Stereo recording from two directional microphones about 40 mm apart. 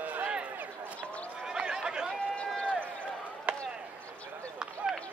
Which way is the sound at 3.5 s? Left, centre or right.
Right.